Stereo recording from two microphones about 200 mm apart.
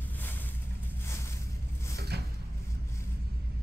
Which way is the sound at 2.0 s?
55° right (ahead or behind).